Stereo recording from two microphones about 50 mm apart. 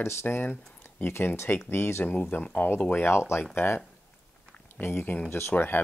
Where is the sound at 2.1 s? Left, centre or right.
Left.